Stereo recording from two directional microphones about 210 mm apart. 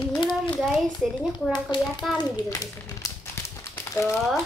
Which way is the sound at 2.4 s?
15° left (ahead or behind).